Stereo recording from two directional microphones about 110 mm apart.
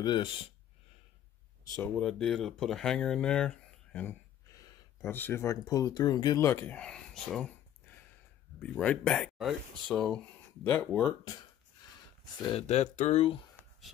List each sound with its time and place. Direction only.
0.0 s speech: 45° left (ahead or behind)
2.0 s speech: 5° left (ahead or behind)
4.5 s a sound: 30° left (ahead or behind)
5.1 s speech: 20° left (ahead or behind); by 6.4 s 35° left (ahead or behind)
6.4 s a sound: 20° left (ahead or behind)
8.5 s speech: 10° left (ahead or behind)
10.6 s speech: 15° left (ahead or behind)
12.5 s speech: 85° left; by 13.4 s 65° left (ahead or behind)